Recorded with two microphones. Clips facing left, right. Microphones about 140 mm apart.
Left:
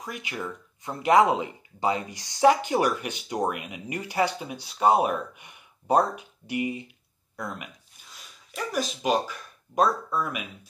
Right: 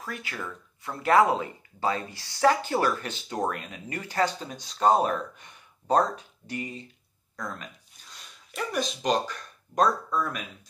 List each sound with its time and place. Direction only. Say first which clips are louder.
0.0 s speech: left 2 dB; 15° left (ahead or behind)
7.3 s a sound: left 1 dB; 10° left (ahead or behind)
8.2 s speech: even; centre (ahead or behind)